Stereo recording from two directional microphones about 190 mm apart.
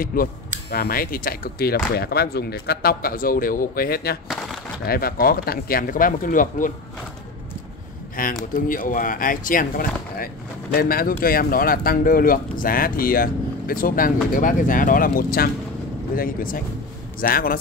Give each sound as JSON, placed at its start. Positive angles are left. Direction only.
{"t": 0.0, "sound": "speech", "side_deg": 50}
{"t": 8.2, "sound": "speech", "side_deg": 50}